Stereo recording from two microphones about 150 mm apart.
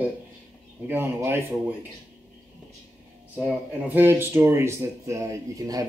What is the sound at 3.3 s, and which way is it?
Speech, 10° right (ahead or behind).